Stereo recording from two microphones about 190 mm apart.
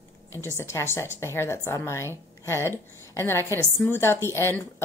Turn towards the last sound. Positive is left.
turn(degrees=15)  # may be behind; listen again after turning